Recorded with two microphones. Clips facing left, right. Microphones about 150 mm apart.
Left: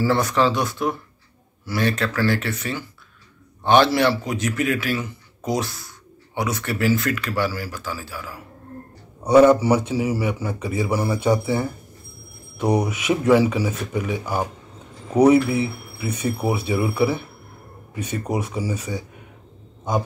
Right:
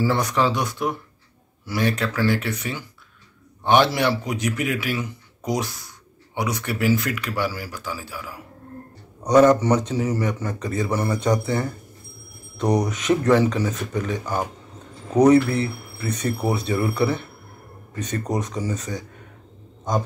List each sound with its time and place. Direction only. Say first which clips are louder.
0.0 s a man's voice: left 2 dB; 15° right (ahead or behind)
9.2 s a man's voice: left 2 dB; 10° left (ahead or behind)